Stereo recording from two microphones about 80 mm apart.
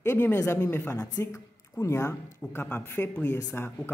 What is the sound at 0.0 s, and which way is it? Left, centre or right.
Speech, left.